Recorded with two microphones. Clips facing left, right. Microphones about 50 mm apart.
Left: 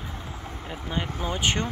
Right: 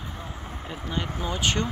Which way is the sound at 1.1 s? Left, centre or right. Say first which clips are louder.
Even; left.